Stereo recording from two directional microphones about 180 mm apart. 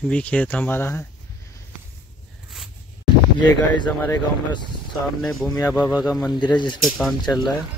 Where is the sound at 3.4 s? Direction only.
25° left (ahead or behind).